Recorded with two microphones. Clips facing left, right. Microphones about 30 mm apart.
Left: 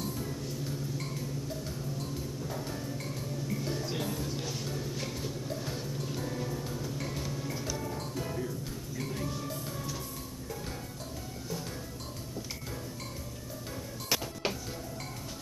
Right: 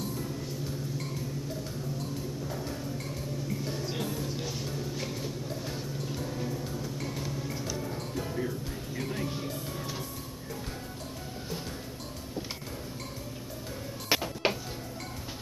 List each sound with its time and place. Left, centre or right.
3.6 s vehicle: centre
8.4 s music: right
14.0 s music: right